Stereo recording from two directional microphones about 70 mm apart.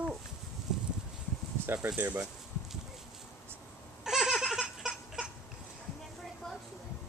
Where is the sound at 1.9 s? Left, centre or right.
Right.